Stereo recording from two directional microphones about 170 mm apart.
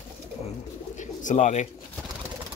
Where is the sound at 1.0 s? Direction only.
45° left (ahead or behind).